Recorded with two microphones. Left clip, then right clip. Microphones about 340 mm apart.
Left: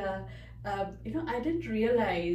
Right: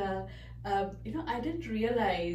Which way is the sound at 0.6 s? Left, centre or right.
Centre.